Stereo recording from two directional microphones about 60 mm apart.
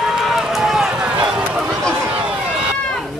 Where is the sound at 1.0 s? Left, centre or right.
Centre.